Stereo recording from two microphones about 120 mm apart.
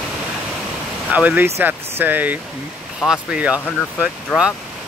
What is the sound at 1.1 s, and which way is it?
Speech, 15° right (ahead or behind).